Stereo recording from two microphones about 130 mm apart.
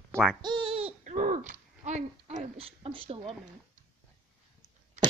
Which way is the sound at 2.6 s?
45° right (ahead or behind).